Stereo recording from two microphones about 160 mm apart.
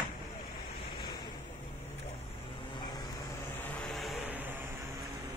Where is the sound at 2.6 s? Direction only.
30° left (ahead or behind).